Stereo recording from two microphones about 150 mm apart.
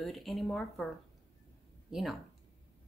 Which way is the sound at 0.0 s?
Centre (ahead or behind).